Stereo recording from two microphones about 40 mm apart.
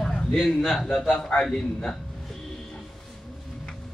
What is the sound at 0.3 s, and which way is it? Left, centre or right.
Speech, centre.